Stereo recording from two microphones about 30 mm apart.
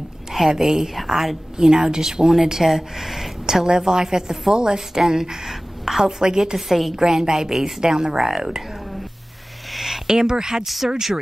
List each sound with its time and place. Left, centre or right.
0.3 s a woman's voice: centre
5.5 s a sound: centre
6.0 s speech: right
6.7 s a woman's voice: centre
7.0 s speech: centre
8.3 s a woman's voice: centre
9.7 s a sound: centre
10.0 s speech: right
10.6 s a woman's voice: centre